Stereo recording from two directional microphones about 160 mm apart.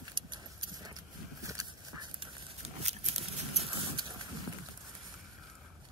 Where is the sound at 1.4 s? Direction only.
20° right (ahead or behind).